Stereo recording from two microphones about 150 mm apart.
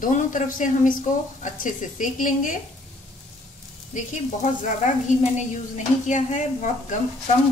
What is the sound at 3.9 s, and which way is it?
Sizzle, 55° left (ahead or behind).